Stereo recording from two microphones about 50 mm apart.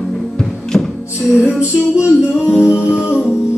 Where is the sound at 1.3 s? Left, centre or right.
Right.